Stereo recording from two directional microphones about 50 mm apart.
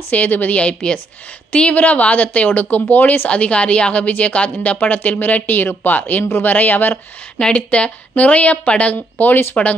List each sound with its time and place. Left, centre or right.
0.1 s a woman's voice: left
3.3 s a woman's voice: left
7.3 s a woman's voice: centre; by 9.6 s left